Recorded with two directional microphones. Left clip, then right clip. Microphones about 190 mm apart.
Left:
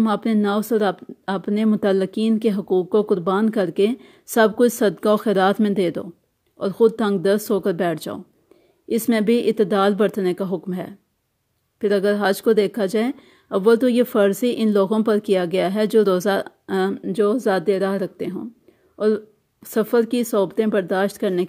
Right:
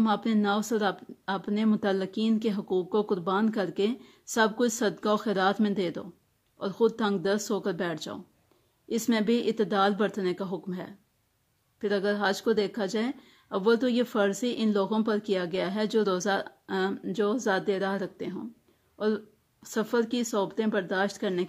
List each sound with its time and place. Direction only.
0.0 s speech: 30° left (ahead or behind)